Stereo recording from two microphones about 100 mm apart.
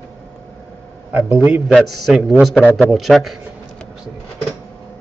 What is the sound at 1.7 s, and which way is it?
A man's voice, centre (ahead or behind).